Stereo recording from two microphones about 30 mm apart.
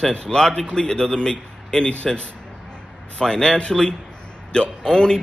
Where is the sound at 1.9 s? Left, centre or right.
Left.